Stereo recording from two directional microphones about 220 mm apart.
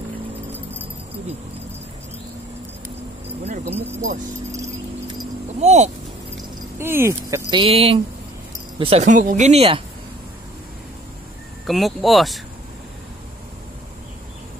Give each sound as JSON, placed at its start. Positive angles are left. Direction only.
{"t": 3.4, "sound": "a sound", "side_deg": -30}
{"t": 5.5, "sound": "speech", "side_deg": -30}
{"t": 6.8, "sound": "speech", "side_deg": -10}
{"t": 11.6, "sound": "speech", "side_deg": 0}